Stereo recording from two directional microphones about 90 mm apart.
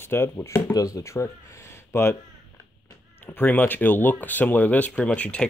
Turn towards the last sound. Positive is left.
turn(degrees=15)  # may be behind; listen again after turning